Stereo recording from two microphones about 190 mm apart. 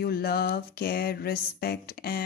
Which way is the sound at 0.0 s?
55° left (ahead or behind).